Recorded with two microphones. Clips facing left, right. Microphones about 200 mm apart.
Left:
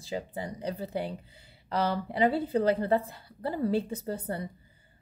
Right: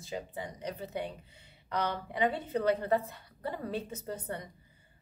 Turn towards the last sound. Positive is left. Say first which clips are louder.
# left 5 dB
turn(degrees=30)  # may be behind; listen again after turning